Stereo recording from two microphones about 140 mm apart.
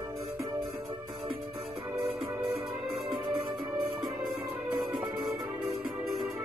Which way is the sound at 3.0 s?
35° right (ahead or behind).